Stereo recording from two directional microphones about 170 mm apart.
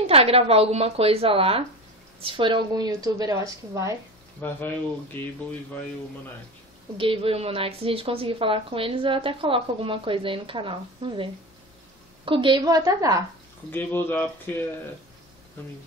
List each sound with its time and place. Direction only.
0.0 s a woman's voice: 35° right (ahead or behind); by 3.9 s 20° right (ahead or behind)
4.4 s speech: 15° left (ahead or behind)
7.0 s a woman's voice: 30° right (ahead or behind)
12.3 s a woman's voice: 30° right (ahead or behind)
13.7 s speech: 10° left (ahead or behind)